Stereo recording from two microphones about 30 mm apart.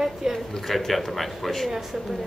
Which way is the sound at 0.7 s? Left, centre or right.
Centre.